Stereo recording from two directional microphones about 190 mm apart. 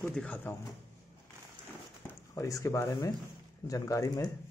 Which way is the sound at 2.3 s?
15° left (ahead or behind).